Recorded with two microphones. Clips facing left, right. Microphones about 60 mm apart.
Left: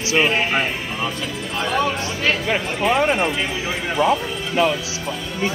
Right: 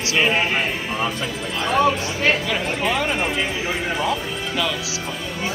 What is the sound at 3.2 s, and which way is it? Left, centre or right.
Speech, centre.